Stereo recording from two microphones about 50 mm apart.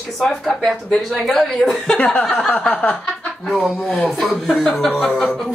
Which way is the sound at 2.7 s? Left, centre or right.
Left.